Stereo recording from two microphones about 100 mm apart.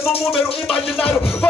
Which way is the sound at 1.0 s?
20° left (ahead or behind).